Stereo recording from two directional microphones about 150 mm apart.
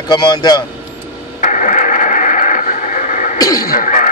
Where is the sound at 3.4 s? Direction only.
25° left (ahead or behind).